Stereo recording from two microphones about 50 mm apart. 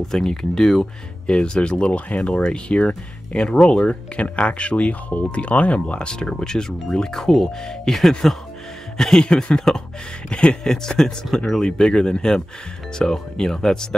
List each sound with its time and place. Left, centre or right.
0.0 s speech: centre
1.2 s speech: centre
3.8 s speech: left